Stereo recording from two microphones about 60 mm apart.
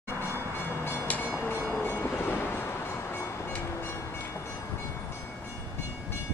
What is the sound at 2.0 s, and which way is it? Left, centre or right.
Vehicle, left.